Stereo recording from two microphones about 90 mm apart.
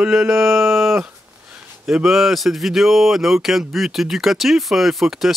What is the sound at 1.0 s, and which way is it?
Speech, 10° right (ahead or behind).